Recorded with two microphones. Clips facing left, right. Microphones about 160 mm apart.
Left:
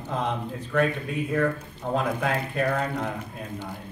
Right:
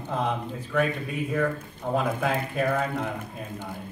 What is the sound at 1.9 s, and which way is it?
Speech, 5° right (ahead or behind).